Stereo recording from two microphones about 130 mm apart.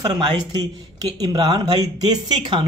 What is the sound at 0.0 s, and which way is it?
Speech, 30° right (ahead or behind).